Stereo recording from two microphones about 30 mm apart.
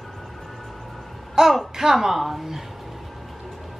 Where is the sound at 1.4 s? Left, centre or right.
Right.